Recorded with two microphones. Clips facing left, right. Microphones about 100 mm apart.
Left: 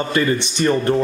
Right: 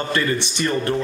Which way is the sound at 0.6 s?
25° left (ahead or behind).